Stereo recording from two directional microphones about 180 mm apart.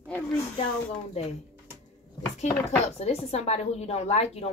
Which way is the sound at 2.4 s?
35° left (ahead or behind).